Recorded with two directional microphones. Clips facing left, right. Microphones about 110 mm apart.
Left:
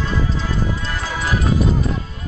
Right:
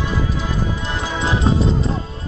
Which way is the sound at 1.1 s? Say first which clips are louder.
Right 2 dB; 20° right (ahead or behind).